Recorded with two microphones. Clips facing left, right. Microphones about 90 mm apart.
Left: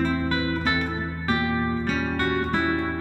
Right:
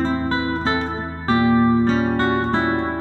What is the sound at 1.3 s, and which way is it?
Music, 30° right (ahead or behind).